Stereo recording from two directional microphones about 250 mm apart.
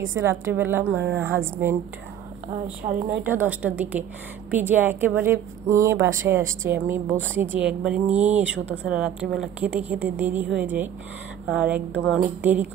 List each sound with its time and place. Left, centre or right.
0.0 s a woman's voice: centre
2.8 s a woman's voice: right
3.3 s a woman's voice: centre